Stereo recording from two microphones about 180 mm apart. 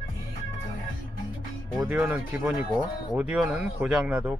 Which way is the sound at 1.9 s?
5° right (ahead or behind).